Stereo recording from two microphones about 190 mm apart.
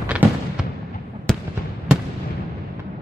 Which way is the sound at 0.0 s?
10° right (ahead or behind).